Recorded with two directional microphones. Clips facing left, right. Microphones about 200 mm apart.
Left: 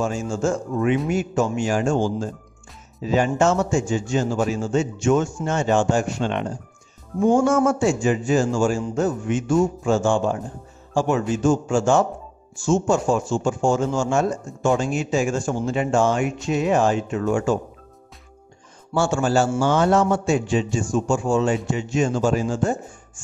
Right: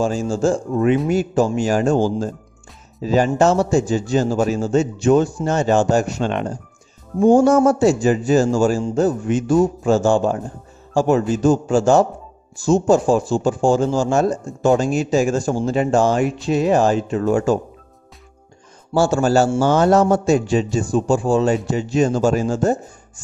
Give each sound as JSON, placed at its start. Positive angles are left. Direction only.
{"t": 0.0, "sound": "speech", "side_deg": -35}
{"t": 18.9, "sound": "speech", "side_deg": -40}